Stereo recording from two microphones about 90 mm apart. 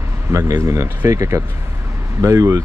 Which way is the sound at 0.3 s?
35° right (ahead or behind).